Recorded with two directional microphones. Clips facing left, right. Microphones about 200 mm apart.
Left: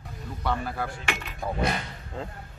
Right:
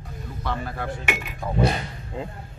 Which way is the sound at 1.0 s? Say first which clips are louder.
Right 3 dB; 15° right (ahead or behind).